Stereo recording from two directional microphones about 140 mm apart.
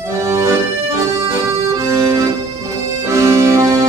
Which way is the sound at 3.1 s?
20° right (ahead or behind).